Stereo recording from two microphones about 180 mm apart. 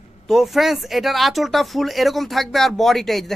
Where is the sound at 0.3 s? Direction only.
Centre (ahead or behind).